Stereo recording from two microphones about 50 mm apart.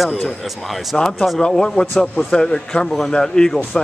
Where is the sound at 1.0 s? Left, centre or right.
Centre.